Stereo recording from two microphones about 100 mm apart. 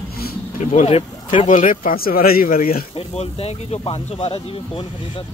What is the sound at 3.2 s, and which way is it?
Speech, 90° left.